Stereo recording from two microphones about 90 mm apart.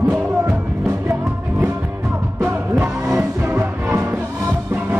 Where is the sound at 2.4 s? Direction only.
15° right (ahead or behind).